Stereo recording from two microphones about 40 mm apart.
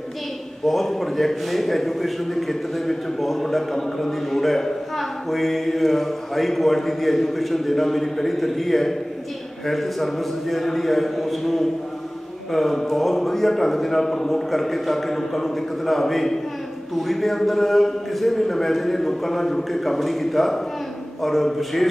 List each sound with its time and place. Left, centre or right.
0.7 s a man's voice: centre